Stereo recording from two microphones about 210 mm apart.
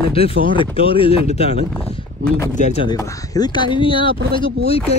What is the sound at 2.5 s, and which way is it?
Speech, 35° left (ahead or behind).